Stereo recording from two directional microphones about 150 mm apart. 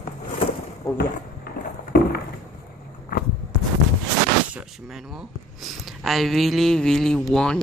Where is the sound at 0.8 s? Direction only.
20° left (ahead or behind).